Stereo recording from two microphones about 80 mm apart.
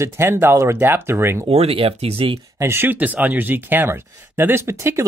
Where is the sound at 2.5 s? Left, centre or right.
Right.